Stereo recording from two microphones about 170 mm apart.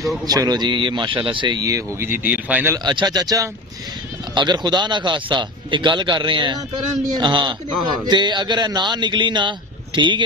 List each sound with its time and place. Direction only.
0.3 s a man's voice: 25° right (ahead or behind)
2.8 s a man's voice: 25° right (ahead or behind)